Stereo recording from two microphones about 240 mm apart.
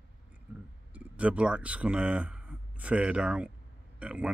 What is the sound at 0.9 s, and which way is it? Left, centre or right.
Speech, centre.